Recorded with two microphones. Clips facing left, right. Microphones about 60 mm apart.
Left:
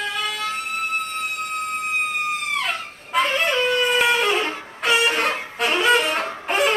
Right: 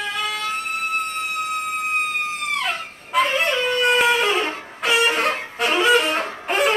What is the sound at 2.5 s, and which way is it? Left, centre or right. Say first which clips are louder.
Music: even; centre.